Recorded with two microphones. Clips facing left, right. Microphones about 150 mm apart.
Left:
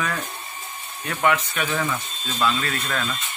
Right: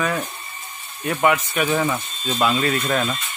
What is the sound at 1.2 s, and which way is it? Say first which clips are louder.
Speech: right 3 dB; 10° right (ahead or behind).